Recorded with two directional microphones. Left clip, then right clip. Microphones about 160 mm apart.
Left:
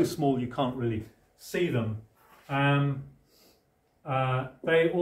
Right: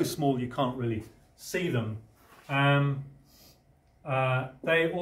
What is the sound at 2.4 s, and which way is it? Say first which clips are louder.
Speech: right 1 dB; 45° right (ahead or behind).